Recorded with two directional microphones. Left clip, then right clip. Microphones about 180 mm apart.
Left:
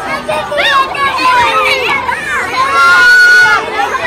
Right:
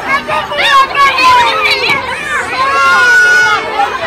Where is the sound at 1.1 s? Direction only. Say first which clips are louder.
Left 3 dB; 15° right (ahead or behind).